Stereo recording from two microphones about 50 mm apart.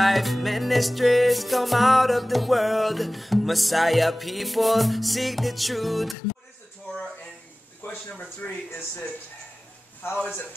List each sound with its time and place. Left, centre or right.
0.0 s music: centre
7.8 s a sound: left
8.4 s speech: left